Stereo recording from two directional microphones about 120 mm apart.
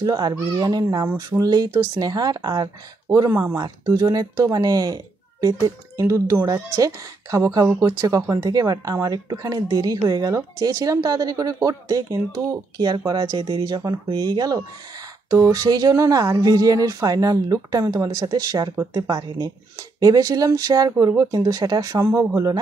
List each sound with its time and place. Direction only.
0.0 s speech: 35° right (ahead or behind)
3.3 s speech: 20° right (ahead or behind)